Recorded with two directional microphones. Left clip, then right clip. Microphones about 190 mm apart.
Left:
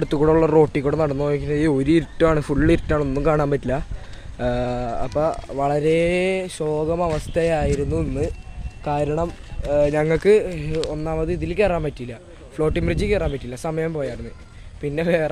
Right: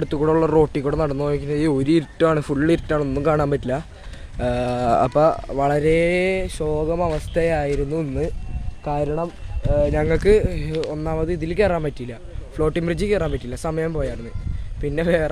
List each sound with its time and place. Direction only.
0.0 s speech: 10° left (ahead or behind)
5.1 s speech: 35° right (ahead or behind)
5.9 s speech: 10° right (ahead or behind); by 10.0 s 15° left (ahead or behind)
10.0 s speech: centre (ahead or behind)